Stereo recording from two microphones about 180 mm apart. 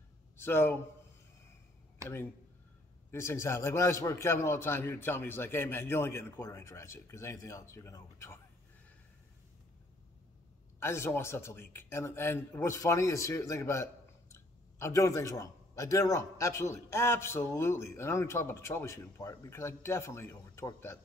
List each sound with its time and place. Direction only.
0.4 s a man's voice: 15° left (ahead or behind)
2.0 s speech: 15° right (ahead or behind)
3.1 s a man's voice: 15° left (ahead or behind)
10.8 s a man's voice: 15° left (ahead or behind)